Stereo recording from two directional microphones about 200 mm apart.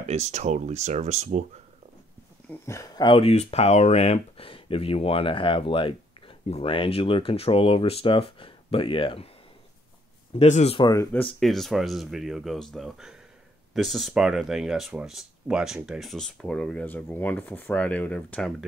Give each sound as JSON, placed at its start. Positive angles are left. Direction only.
{"t": 0.0, "sound": "speech", "side_deg": -35}
{"t": 2.6, "sound": "speech", "side_deg": 15}
{"t": 10.4, "sound": "speech", "side_deg": 35}
{"t": 10.9, "sound": "speech", "side_deg": 10}
{"t": 11.3, "sound": "speech", "side_deg": 0}